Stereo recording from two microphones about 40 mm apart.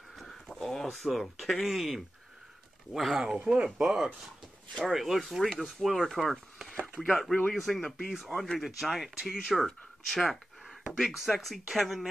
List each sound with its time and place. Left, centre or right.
0.1 s speech: centre
3.3 s speech: right
3.8 s speech: centre
8.3 s speech: centre
8.5 s speech: centre
10.0 s a sound: centre
10.9 s speech: centre